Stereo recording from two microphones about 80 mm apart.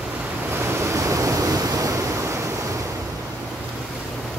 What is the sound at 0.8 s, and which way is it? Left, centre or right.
Waves, right.